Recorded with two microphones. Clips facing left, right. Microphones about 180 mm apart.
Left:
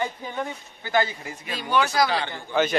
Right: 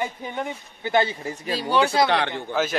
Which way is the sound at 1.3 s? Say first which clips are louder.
Right 3 dB; 35° right (ahead or behind).